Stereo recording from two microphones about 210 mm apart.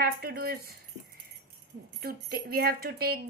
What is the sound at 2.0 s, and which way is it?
Speech, 45° right (ahead or behind).